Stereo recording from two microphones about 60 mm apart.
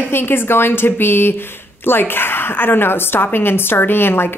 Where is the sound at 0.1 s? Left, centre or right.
Left.